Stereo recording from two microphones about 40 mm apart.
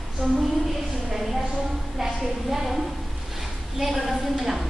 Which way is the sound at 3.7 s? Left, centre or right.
Centre.